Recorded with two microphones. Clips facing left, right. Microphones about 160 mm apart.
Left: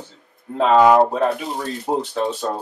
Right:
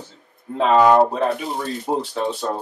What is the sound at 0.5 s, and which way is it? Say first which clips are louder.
Speech: left 1 dB; centre (ahead or behind).